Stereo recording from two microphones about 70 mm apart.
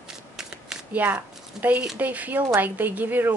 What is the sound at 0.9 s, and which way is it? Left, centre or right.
Speech, right.